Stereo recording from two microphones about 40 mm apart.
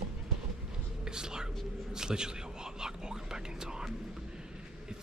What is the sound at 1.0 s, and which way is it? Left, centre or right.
Whispering, centre.